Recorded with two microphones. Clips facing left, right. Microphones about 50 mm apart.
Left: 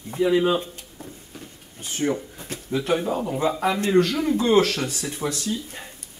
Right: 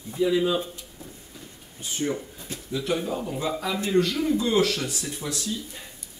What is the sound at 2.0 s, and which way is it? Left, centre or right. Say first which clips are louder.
Speech: left 6 dB; left.